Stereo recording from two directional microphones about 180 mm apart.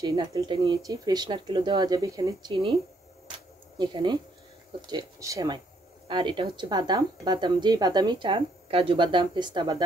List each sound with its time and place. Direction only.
0.0 s speech: 25° right (ahead or behind)
3.3 s a sound: 25° right (ahead or behind)
4.8 s speech: 20° right (ahead or behind)